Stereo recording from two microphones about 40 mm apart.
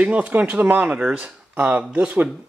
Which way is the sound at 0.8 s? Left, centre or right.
Right.